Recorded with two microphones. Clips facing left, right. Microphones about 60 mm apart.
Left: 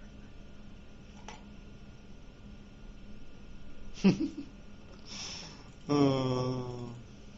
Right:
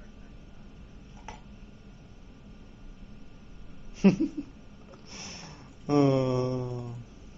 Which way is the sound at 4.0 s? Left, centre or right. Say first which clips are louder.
Right 4 dB; right.